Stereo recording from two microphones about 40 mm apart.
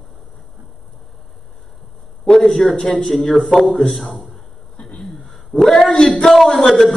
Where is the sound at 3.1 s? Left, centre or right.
Centre.